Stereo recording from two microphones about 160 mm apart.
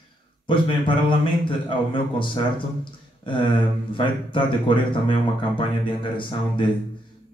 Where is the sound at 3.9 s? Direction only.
30° left (ahead or behind).